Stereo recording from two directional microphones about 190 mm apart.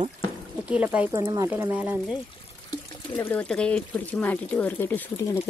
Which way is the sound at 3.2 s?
10° left (ahead or behind).